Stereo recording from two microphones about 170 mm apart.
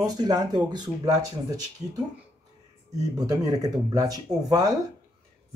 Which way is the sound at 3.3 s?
20° right (ahead or behind).